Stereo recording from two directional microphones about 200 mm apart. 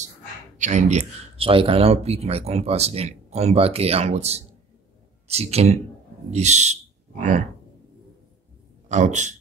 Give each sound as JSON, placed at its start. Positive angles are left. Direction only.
{"t": 0.6, "sound": "speech", "side_deg": -35}
{"t": 8.8, "sound": "a man's voice", "side_deg": -35}